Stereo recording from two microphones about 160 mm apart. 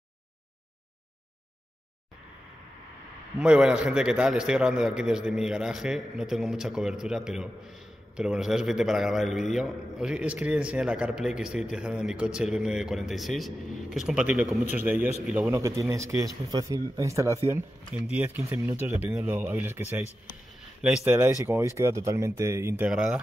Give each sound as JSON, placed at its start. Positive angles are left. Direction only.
{"t": 3.3, "sound": "a man's voice", "side_deg": -5}
{"t": 15.6, "sound": "speech", "side_deg": -20}
{"t": 21.0, "sound": "speech", "side_deg": -15}
{"t": 22.8, "sound": "a man's voice", "side_deg": -5}